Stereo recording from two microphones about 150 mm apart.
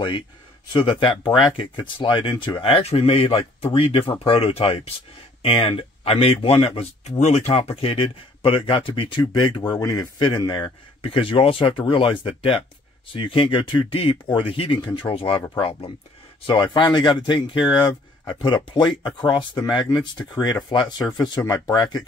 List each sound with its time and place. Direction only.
0.7 s speech: 35° left (ahead or behind)
16.4 s speech: 35° left (ahead or behind)